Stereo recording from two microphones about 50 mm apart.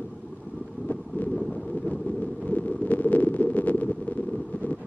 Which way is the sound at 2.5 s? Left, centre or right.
Left.